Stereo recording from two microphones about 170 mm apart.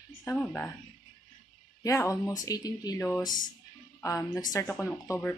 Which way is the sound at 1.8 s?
20° left (ahead or behind).